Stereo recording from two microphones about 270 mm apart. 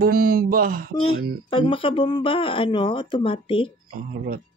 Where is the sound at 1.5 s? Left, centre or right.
Centre.